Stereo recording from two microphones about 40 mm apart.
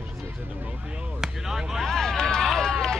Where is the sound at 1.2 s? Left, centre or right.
Centre.